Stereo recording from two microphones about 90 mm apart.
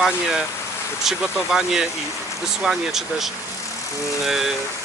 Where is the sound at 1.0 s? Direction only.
5° right (ahead or behind).